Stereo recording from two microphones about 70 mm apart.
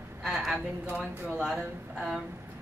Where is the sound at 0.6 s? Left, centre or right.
Right.